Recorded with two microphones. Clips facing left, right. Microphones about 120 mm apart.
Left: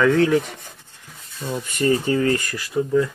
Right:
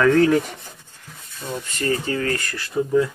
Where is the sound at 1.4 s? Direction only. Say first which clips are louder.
Left 4 dB; 15° left (ahead or behind).